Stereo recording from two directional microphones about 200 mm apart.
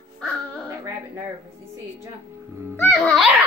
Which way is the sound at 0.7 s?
15° right (ahead or behind).